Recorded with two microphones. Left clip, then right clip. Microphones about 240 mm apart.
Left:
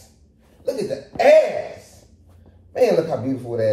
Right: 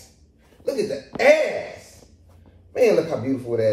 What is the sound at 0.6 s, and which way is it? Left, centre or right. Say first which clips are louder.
Speech: even; centre.